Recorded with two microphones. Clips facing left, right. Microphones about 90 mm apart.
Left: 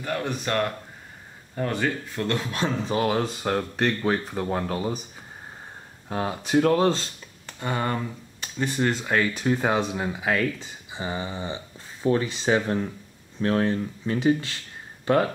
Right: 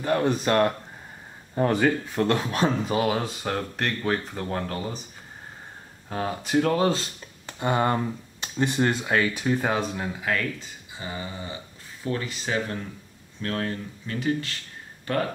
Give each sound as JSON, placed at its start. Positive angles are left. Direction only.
{"t": 0.0, "sound": "speech", "side_deg": -30}
{"t": 1.7, "sound": "speech", "side_deg": -25}
{"t": 2.9, "sound": "speech", "side_deg": -5}
{"t": 6.0, "sound": "speech", "side_deg": 5}
{"t": 7.4, "sound": "speech", "side_deg": -20}
{"t": 10.9, "sound": "speech", "side_deg": 25}